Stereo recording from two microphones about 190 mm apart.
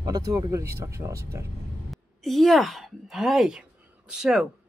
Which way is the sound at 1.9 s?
Centre (ahead or behind).